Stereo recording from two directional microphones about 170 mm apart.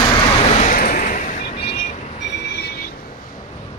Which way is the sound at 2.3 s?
90° left.